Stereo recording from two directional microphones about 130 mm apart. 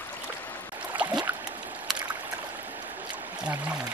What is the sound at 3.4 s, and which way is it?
Pour, 10° right (ahead or behind).